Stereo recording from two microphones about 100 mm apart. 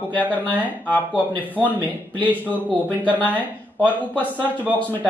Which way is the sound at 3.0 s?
15° left (ahead or behind).